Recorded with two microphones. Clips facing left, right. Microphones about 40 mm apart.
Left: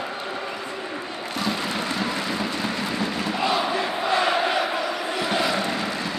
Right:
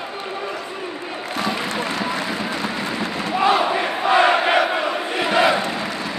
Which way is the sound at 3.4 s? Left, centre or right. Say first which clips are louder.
Right 6 dB; right.